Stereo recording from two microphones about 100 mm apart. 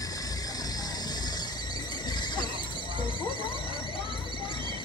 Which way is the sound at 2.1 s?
50° left (ahead or behind).